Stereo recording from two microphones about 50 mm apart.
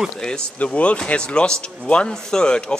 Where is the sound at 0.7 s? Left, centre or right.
Left.